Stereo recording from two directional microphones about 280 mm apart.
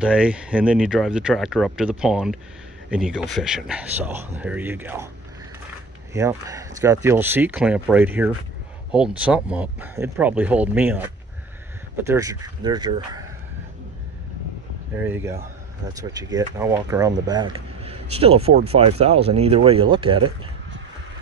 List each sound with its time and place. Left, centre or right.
0.0 s speech: centre
6.1 s speech: centre
12.1 s speech: centre
15.0 s speech: centre